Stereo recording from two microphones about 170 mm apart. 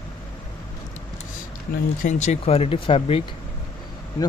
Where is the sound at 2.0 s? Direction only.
40° left (ahead or behind).